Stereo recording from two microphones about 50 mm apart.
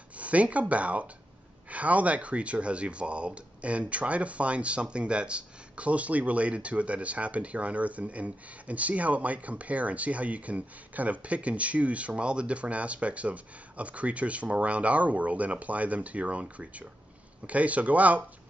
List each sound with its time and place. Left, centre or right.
0.2 s speech: right